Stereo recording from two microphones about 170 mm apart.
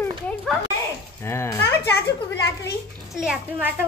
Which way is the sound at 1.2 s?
15° left (ahead or behind).